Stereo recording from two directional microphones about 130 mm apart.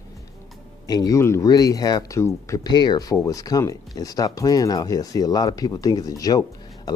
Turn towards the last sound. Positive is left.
turn(degrees=30)  # may be behind; listen again after turning